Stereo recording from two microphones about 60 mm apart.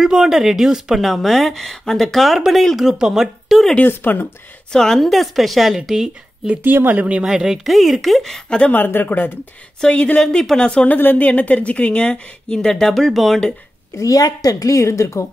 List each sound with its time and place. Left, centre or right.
0.0 s speech: centre
3.8 s speech: left
4.7 s speech: centre
5.8 s speech: centre
6.5 s speech: right
7.2 s speech: centre
8.7 s speech: left
9.8 s speech: centre
10.2 s speech: centre
10.9 s speech: left; by 13.4 s centre
13.9 s a woman's voice: left